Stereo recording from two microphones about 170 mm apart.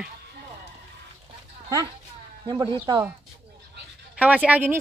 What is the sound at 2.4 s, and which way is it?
Speech, 25° right (ahead or behind).